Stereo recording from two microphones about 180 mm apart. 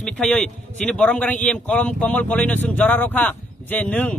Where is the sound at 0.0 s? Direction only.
5° left (ahead or behind).